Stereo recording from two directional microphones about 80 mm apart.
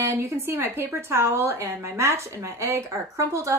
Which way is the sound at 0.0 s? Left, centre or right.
Right.